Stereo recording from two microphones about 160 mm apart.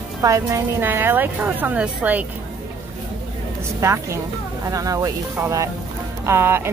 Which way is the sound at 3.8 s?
20° right (ahead or behind).